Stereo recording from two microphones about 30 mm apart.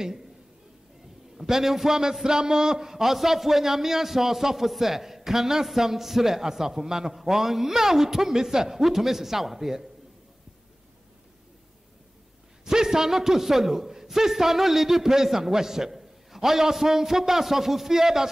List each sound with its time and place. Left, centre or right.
1.4 s a man's voice: centre
12.6 s a man's voice: centre